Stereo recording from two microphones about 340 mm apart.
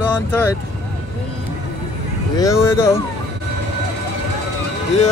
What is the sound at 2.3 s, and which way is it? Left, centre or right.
Speech, centre.